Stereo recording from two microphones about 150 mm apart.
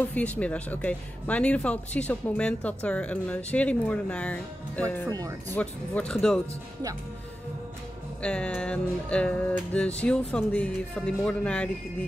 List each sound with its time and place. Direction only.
0.1 s speech: 10° left (ahead or behind)
5.0 s speech: 25° right (ahead or behind)
5.5 s speech: 10° left (ahead or behind)
8.2 s speech: 5° left (ahead or behind)